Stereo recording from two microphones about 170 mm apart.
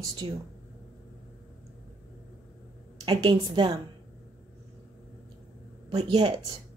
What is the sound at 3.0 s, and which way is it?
Speech, 30° right (ahead or behind).